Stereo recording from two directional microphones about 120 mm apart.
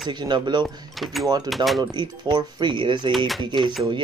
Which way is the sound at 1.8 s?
40° right (ahead or behind).